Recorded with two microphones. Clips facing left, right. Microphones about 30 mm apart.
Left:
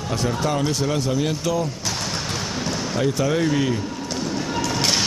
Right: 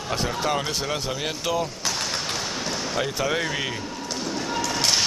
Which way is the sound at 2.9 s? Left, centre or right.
Centre.